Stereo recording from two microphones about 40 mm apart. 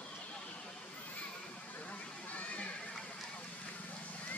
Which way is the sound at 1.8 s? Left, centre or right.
Left.